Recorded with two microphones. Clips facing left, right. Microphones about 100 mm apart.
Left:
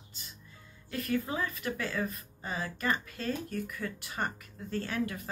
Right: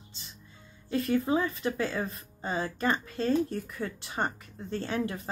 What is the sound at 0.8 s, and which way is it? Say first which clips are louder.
Speech: right 6 dB; 25° right (ahead or behind).